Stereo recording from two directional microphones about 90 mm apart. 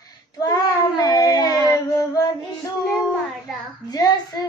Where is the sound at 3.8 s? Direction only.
45° left (ahead or behind).